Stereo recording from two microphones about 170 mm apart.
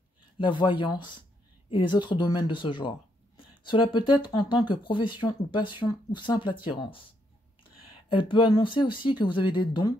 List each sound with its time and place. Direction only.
0.4 s speech: 30° left (ahead or behind)